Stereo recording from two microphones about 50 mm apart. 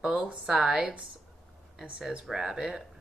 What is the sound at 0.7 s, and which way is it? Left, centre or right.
Speech, right.